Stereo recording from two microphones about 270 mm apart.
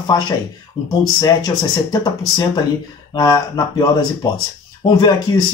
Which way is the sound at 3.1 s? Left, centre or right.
Centre.